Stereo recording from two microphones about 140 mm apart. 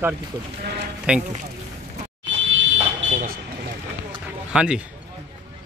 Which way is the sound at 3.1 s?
65° right (ahead or behind).